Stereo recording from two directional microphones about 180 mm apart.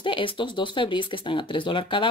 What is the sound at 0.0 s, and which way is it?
Speech, 30° left (ahead or behind).